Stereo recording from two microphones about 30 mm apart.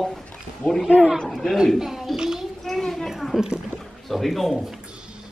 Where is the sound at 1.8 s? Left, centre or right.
Centre.